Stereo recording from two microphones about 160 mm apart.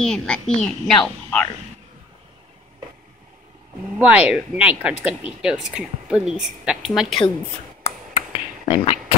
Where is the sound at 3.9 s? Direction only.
10° right (ahead or behind).